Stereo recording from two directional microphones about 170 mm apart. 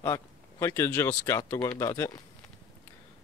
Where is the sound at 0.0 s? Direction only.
15° left (ahead or behind).